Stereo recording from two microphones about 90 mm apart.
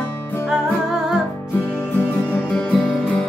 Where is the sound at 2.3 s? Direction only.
15° left (ahead or behind).